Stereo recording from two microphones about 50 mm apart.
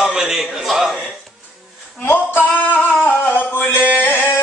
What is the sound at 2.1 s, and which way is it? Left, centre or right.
Music, left.